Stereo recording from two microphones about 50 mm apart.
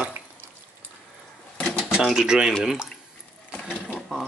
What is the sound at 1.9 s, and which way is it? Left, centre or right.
Speech, centre.